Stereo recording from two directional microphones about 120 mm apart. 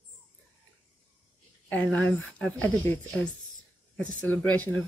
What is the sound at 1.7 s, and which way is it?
Speech, 10° left (ahead or behind).